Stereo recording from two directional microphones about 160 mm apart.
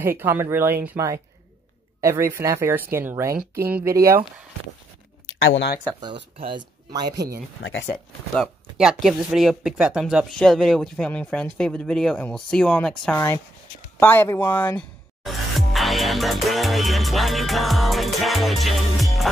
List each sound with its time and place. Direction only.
0.0 s speech: 15° right (ahead or behind)
6.3 s speech: 30° right (ahead or behind)
8.4 s speech: centre (ahead or behind)
15.2 s music: centre (ahead or behind)